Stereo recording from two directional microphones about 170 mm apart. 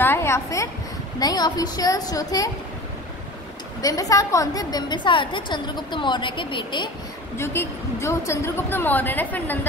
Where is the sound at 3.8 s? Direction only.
20° left (ahead or behind).